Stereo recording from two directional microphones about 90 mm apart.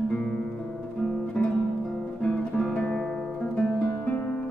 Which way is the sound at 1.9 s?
5° left (ahead or behind).